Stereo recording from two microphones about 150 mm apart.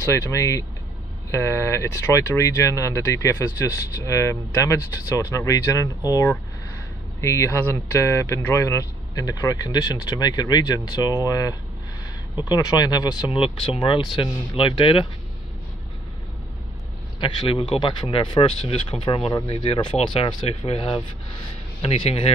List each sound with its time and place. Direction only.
0.1 s speech: 20° left (ahead or behind)
17.2 s speech: 35° left (ahead or behind)